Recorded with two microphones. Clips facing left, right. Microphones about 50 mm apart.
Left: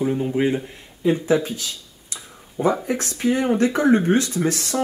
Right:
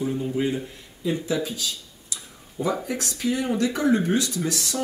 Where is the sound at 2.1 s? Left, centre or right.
Left.